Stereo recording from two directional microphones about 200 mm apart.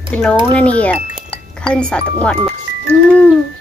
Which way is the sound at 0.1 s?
5° left (ahead or behind).